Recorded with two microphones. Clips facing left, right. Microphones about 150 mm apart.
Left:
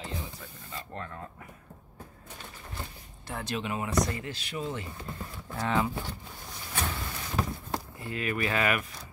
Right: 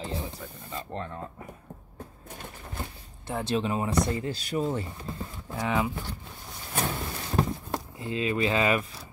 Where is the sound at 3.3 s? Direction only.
25° right (ahead or behind).